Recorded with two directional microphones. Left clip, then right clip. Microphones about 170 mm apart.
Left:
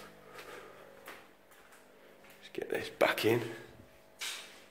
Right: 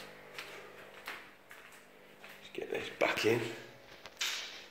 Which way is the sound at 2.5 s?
45° left (ahead or behind).